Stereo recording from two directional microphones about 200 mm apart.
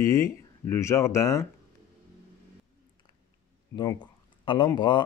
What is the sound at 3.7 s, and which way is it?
Speech, 20° left (ahead or behind).